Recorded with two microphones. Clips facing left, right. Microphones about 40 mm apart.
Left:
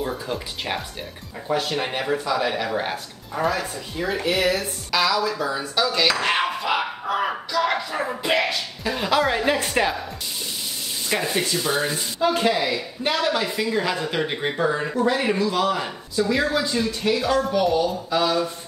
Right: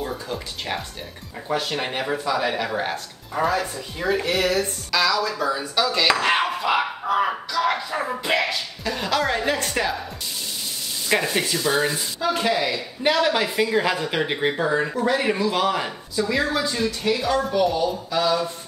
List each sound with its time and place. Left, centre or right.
0.0 s speech: centre
6.0 s a sound: centre
11.3 s speech: centre
13.2 s speech: centre
14.6 s speech: centre
16.8 s speech: centre